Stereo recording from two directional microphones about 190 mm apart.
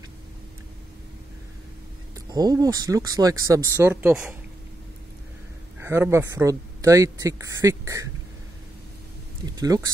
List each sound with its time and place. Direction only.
2.1 s a man's voice: 20° right (ahead or behind)
5.8 s a man's voice: 15° right (ahead or behind)
9.6 s speech: 20° right (ahead or behind)